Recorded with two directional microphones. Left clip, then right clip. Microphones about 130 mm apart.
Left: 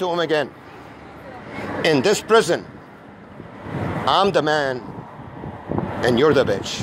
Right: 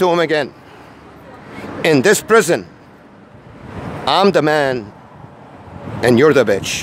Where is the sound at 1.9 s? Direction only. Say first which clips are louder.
Right 5 dB; 45° right (ahead or behind).